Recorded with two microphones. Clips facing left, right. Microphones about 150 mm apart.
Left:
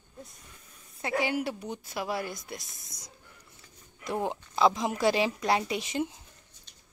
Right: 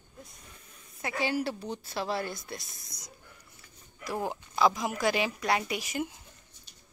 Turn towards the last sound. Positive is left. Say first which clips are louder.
# left 2 dB
turn(degrees=25)  # may be behind; listen again after turning